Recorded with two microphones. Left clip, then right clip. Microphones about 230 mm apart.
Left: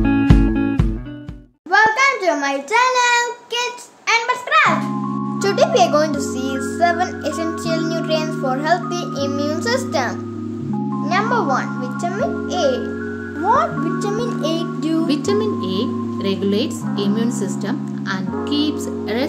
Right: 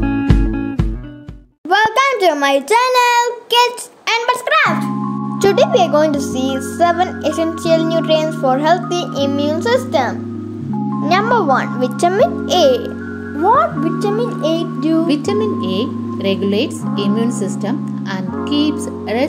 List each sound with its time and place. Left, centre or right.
1.7 s a sound: right
5.4 s a child's voice: right
11.1 s a child's voice: right
13.4 s a child's voice: centre
15.6 s speech: left